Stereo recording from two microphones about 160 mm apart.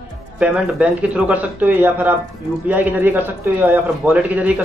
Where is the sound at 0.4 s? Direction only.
10° right (ahead or behind).